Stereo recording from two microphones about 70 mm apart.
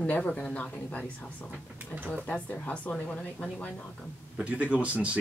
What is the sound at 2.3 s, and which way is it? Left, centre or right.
Speech, centre.